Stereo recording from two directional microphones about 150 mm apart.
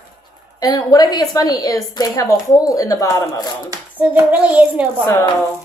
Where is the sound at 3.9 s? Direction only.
10° right (ahead or behind).